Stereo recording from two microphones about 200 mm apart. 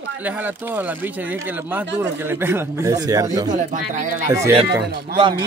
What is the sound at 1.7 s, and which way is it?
Speech, 10° right (ahead or behind).